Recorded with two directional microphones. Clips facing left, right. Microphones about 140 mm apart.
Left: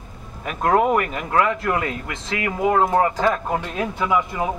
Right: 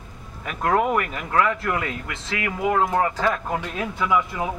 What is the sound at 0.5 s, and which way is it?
Speech, 30° left (ahead or behind).